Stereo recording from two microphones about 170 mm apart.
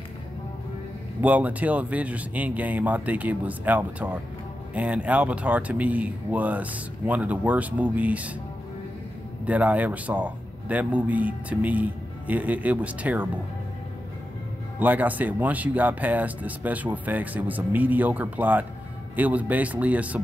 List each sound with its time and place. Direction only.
1.2 s speech: 10° right (ahead or behind)
9.5 s speech: 10° right (ahead or behind)
14.8 s speech: 10° right (ahead or behind)